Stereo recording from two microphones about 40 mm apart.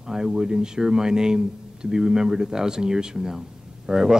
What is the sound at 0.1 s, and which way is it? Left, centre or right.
Speech, centre.